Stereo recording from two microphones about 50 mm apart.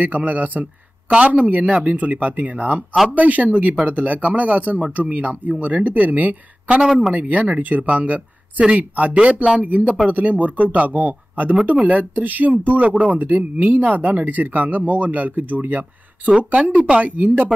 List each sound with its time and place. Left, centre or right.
0.0 s a man's voice: right
6.8 s speech: centre
7.2 s a man's voice: right
9.6 s speech: right